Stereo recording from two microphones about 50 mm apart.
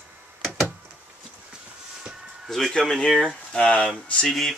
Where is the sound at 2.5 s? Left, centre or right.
Centre.